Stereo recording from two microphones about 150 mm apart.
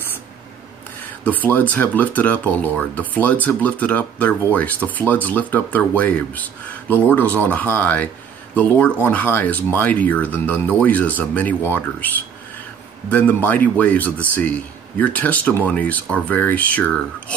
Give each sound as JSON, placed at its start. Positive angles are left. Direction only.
{"t": 1.2, "sound": "speech", "side_deg": 10}
{"t": 13.1, "sound": "speech", "side_deg": 10}